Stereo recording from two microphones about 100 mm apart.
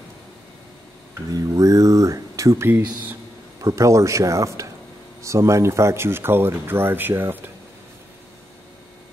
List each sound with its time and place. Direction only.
1.1 s a sound: 35° right (ahead or behind)
2.7 s speech: 20° right (ahead or behind)
3.6 s speech: 30° right (ahead or behind)